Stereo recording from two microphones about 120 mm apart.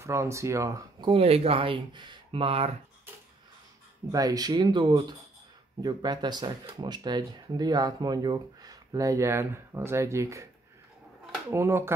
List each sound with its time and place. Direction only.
0.0 s speech: 25° right (ahead or behind)
1.0 s speech: 55° right (ahead or behind)
4.1 s speech: 30° right (ahead or behind)
11.5 s speech: 20° right (ahead or behind)